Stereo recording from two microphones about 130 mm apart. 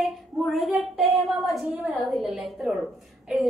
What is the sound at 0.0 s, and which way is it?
Child singing, centre (ahead or behind).